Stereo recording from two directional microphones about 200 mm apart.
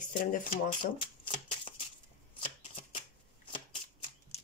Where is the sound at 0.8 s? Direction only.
25° left (ahead or behind).